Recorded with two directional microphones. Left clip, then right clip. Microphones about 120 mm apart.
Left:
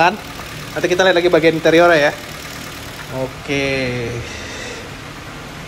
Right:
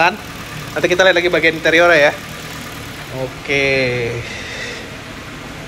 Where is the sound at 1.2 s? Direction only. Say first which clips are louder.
Left 1 dB; 40° left (ahead or behind).